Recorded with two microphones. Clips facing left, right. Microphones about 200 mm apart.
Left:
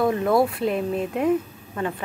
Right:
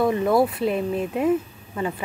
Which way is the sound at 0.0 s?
Centre (ahead or behind).